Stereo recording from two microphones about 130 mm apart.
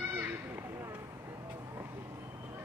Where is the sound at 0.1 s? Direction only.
15° right (ahead or behind).